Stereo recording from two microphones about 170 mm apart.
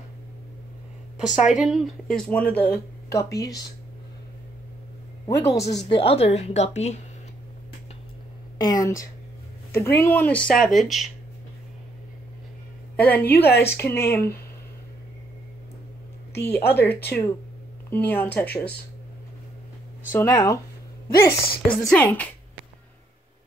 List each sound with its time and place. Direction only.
1.4 s speech: 5° right (ahead or behind); by 3.5 s 20° left (ahead or behind)
5.2 s speech: 15° left (ahead or behind)
5.9 s a woman's voice: 30° left (ahead or behind)
8.5 s a woman's voice: 20° left (ahead or behind); by 11.1 s centre (ahead or behind)
12.9 s a woman's voice: 10° left (ahead or behind)
16.3 s speech: 15° left (ahead or behind)
20.1 s speech: 15° left (ahead or behind)
21.1 s a woman's voice: 60° left (ahead or behind)
21.8 s speech: 5° left (ahead or behind)